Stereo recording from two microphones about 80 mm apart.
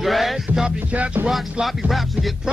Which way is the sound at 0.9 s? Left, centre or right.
Centre.